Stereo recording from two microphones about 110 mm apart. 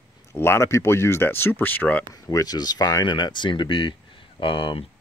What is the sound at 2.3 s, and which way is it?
Speech, 35° left (ahead or behind).